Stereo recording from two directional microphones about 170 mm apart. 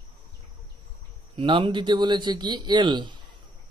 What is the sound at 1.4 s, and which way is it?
Speech, 30° right (ahead or behind).